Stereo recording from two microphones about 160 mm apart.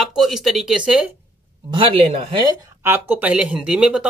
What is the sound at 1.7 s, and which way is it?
Speech, 35° right (ahead or behind).